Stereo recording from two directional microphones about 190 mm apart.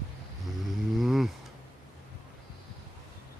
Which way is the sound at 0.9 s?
Centre (ahead or behind).